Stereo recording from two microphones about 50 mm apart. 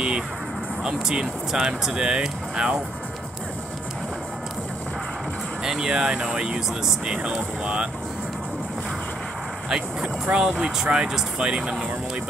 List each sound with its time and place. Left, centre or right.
0.8 s speech: centre
5.6 s speech: centre
9.7 s speech: centre